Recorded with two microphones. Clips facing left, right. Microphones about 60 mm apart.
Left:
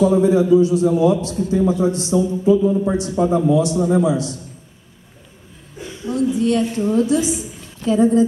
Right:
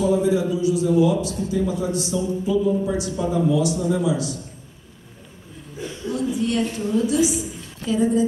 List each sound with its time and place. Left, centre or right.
0.0 s a man's voice: left
6.0 s a man's voice: left